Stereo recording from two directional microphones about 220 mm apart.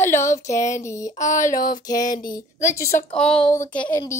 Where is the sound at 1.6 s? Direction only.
15° left (ahead or behind).